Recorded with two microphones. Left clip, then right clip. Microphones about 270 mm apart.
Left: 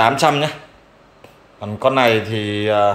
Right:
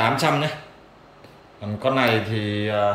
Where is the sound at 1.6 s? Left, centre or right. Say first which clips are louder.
Left 6 dB; centre.